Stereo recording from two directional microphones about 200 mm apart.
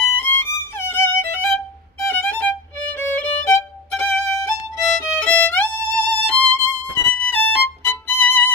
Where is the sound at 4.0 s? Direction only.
5° left (ahead or behind).